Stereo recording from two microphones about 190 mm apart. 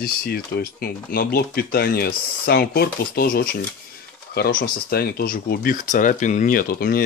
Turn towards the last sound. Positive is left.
turn(degrees=50)  # may be behind; listen again after turning